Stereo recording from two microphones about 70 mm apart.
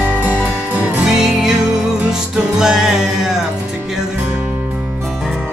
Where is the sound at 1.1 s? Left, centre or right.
Centre.